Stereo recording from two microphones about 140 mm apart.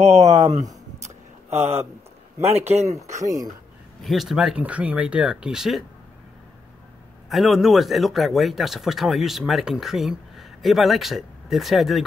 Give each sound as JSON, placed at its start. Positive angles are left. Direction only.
{"t": 0.0, "sound": "speech", "side_deg": -55}
{"t": 1.0, "sound": "a sound", "side_deg": -50}
{"t": 2.5, "sound": "speech", "side_deg": -50}
{"t": 2.9, "sound": "speech", "side_deg": -20}
{"t": 4.0, "sound": "speech", "side_deg": 0}
{"t": 7.2, "sound": "speech", "side_deg": 0}